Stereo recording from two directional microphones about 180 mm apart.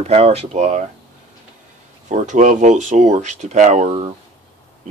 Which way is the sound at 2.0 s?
45° right (ahead or behind).